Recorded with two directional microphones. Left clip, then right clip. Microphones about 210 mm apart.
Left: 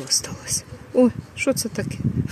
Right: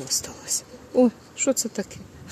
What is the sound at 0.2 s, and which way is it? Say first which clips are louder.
Speech: left 2 dB; 10° left (ahead or behind).